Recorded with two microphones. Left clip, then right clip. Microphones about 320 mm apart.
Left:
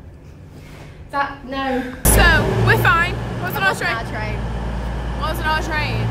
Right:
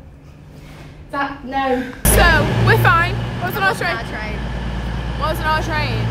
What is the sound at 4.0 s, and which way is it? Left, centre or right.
Speech, centre.